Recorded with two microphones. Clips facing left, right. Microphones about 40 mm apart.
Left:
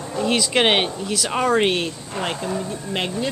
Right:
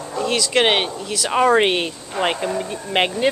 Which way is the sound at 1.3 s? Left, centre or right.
Centre.